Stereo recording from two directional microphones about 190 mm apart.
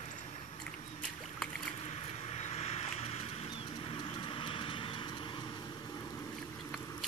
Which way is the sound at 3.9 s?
25° left (ahead or behind).